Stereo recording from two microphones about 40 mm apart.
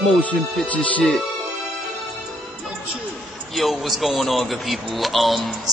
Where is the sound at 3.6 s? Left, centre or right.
Centre.